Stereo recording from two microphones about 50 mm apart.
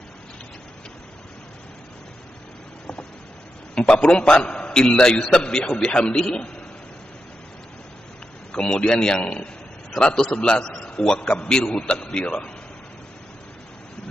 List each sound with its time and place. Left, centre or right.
3.7 s a man's voice: centre
8.5 s a man's voice: centre